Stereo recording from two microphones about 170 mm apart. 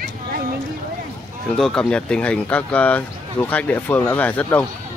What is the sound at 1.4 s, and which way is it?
Speech, 5° left (ahead or behind).